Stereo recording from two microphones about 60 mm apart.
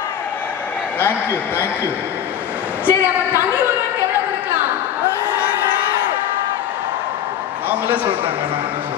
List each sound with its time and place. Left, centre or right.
0.9 s a man's voice: left
2.9 s a woman's voice: right
7.7 s a sound: right